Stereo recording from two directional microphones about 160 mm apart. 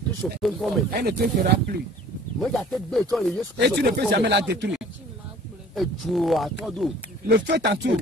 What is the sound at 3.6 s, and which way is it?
Speech, 90° right.